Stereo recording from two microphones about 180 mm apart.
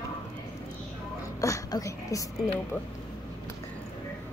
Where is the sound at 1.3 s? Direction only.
20° left (ahead or behind).